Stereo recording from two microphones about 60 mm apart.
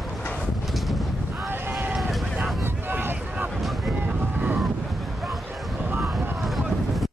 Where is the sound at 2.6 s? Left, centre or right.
Right.